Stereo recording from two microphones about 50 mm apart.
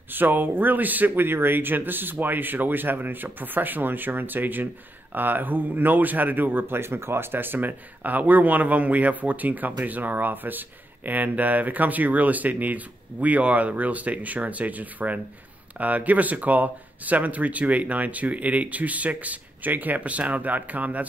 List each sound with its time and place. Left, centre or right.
0.1 s speech: right